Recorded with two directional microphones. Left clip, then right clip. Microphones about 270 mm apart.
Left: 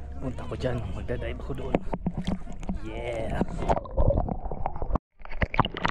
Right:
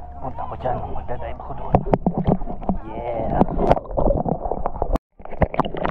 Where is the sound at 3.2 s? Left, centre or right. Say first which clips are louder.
Right 13 dB; left.